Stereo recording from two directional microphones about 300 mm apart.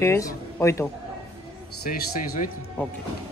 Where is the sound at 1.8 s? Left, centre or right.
Left.